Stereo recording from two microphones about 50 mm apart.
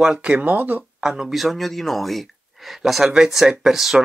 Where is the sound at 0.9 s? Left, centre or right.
Centre.